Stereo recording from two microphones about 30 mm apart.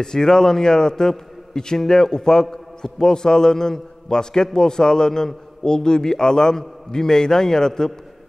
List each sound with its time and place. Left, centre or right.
0.0 s a man's voice: left